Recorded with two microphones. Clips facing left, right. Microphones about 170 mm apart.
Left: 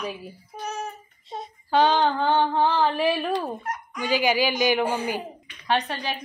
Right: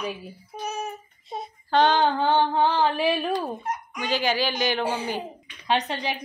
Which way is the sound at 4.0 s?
10° left (ahead or behind).